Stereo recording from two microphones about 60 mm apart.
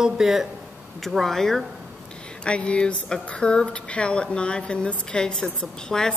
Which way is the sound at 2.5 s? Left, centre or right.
Centre.